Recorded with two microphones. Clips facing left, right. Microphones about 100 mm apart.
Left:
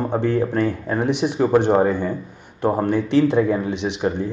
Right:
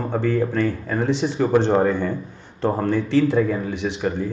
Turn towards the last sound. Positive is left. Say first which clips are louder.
# left 1 dB
turn(degrees=20)  # may be behind; listen again after turning